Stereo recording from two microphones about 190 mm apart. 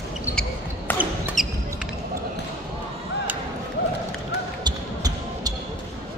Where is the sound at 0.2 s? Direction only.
10° left (ahead or behind).